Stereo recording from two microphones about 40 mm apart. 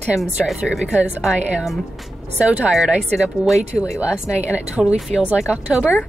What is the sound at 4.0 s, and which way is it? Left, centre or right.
Speech, right.